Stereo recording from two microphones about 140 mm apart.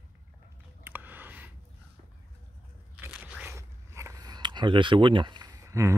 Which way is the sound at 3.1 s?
10° right (ahead or behind).